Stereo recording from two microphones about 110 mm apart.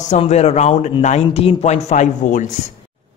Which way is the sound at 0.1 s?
80° left.